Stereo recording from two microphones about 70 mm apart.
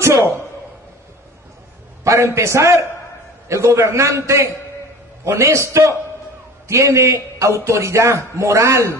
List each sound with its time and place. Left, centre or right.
0.0 s a man's voice: right
2.0 s a man's voice: right